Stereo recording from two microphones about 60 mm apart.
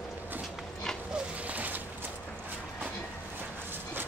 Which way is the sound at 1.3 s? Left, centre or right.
Right.